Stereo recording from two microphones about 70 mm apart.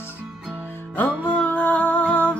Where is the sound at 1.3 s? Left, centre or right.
Centre.